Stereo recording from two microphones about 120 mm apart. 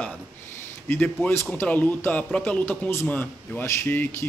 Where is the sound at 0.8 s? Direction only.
15° left (ahead or behind).